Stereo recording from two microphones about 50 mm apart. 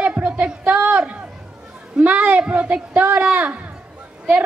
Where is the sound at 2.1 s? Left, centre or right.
Right.